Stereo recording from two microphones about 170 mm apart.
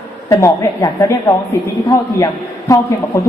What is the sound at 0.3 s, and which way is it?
A woman's voice, 15° left (ahead or behind).